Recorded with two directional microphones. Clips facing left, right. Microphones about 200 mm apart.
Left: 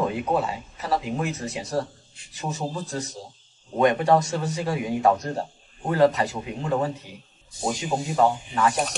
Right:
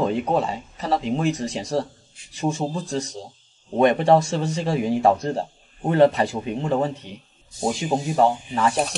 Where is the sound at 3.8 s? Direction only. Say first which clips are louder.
Right 3 dB; 25° right (ahead or behind).